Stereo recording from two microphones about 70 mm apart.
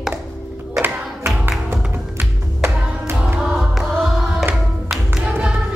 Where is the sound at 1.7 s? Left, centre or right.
Right.